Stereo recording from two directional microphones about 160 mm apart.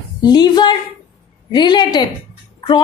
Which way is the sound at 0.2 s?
25° left (ahead or behind).